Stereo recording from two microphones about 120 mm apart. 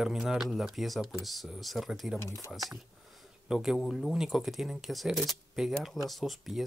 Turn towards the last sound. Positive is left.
turn(degrees=0)  # may be behind; listen again after turning